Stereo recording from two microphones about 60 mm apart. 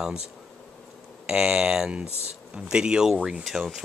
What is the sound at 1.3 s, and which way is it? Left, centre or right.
Speech, centre.